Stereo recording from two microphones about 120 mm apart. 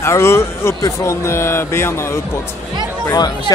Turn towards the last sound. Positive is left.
turn(degrees=35)  # may be behind; listen again after turning